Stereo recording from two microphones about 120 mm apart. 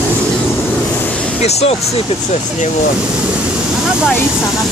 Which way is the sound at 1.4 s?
65° left (ahead or behind).